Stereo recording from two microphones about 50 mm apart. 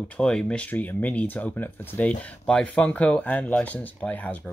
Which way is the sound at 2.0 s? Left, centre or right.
Left.